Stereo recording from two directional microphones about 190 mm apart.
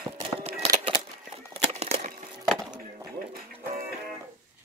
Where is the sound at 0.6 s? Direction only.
30° right (ahead or behind).